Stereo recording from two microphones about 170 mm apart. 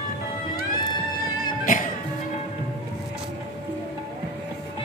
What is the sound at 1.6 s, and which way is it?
Music, 55° left (ahead or behind).